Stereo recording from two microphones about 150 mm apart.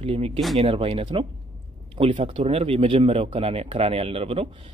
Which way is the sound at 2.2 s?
40° right (ahead or behind).